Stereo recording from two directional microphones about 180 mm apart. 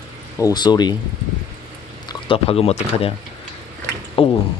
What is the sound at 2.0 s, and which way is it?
Speech, 30° left (ahead or behind).